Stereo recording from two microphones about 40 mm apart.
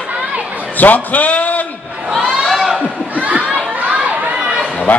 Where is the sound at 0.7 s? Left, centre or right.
Left.